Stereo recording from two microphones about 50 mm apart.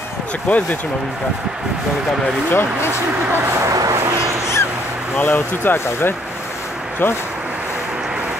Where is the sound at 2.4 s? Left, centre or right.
Left.